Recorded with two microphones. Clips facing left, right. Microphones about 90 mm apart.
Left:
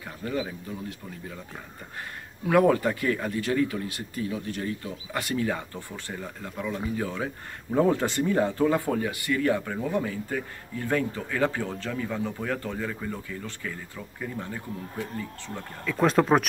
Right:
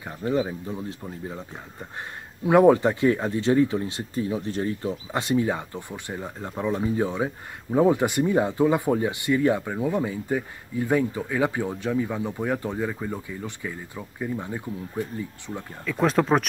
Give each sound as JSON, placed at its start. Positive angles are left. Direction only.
{"t": 0.0, "sound": "speech", "side_deg": -25}
{"t": 2.4, "sound": "speech", "side_deg": -20}
{"t": 15.8, "sound": "speech", "side_deg": 0}